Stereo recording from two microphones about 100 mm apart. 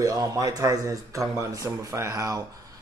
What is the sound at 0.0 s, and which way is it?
Speech, 35° right (ahead or behind).